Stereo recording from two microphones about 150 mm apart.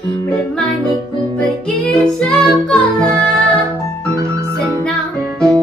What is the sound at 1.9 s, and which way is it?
Music, 5° left (ahead or behind).